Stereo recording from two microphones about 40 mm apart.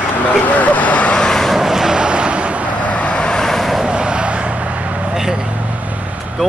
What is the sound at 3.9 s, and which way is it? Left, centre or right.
Vehicle, right.